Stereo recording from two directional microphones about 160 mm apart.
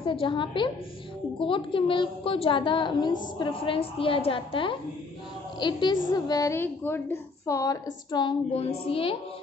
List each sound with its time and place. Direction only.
0.0 s a woman's voice: 30° left (ahead or behind)